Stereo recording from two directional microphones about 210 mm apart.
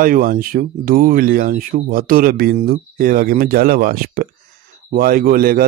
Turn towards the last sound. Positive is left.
turn(degrees=-45)  # may be behind; listen again after turning